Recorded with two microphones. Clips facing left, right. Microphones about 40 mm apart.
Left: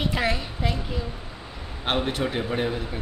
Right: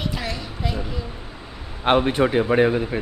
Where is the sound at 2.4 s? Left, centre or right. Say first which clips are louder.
Right 9 dB; right.